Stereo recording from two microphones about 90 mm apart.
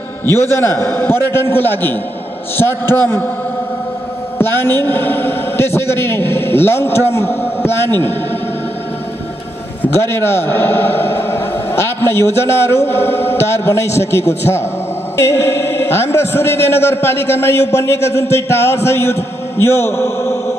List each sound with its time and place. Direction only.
0.2 s a man's voice: 25° left (ahead or behind)
4.4 s a man's voice: 25° left (ahead or behind)
9.9 s a man's voice: 30° left (ahead or behind)